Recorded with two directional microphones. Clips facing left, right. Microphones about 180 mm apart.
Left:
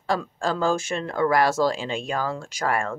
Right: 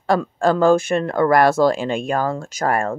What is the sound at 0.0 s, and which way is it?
Speech, 60° right (ahead or behind).